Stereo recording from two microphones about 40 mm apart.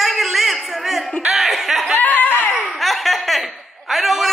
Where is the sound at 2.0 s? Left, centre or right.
Left.